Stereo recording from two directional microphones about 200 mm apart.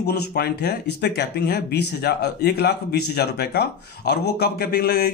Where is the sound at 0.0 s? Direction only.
55° left (ahead or behind).